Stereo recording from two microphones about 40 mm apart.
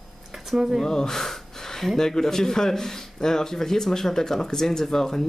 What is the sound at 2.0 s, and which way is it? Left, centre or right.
Speech, centre.